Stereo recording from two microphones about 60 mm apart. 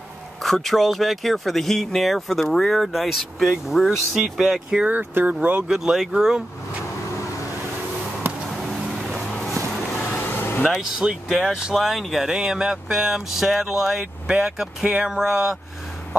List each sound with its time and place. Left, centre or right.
0.4 s speech: centre
4.9 s speech: right
5.7 s speech: centre
8.5 s a sound: centre
10.0 s vehicle: left
10.7 s speech: centre
11.7 s speech: centre